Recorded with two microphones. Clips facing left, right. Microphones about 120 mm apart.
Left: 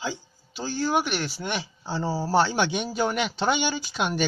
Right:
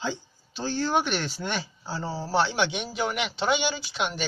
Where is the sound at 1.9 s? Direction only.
30° left (ahead or behind).